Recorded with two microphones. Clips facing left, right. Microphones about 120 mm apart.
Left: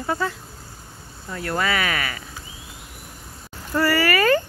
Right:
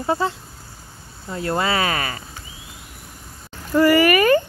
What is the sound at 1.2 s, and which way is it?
Speech, 25° right (ahead or behind).